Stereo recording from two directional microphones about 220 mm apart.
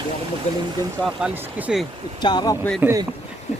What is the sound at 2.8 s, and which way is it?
Speech, 15° right (ahead or behind).